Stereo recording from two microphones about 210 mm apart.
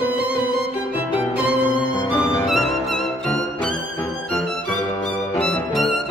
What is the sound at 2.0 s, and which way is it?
Music, 25° left (ahead or behind).